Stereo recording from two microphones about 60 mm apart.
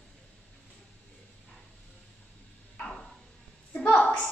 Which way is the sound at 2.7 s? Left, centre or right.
Centre.